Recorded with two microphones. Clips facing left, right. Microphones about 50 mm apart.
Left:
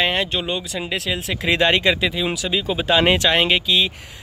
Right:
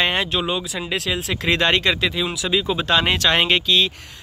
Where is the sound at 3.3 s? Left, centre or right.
Centre.